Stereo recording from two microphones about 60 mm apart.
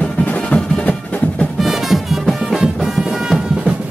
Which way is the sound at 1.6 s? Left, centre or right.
Centre.